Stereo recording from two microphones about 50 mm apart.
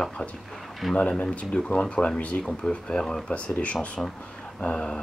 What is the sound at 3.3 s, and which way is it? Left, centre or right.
Speech, left.